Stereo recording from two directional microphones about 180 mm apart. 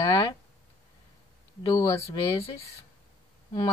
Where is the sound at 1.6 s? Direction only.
20° left (ahead or behind).